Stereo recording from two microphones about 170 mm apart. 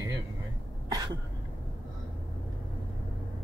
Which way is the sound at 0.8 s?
20° right (ahead or behind).